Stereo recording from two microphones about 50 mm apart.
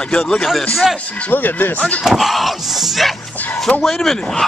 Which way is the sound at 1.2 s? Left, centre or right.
Left.